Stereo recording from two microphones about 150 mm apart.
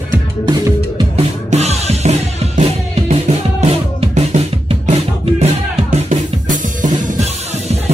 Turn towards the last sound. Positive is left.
turn(degrees=-60)  # may be behind; listen again after turning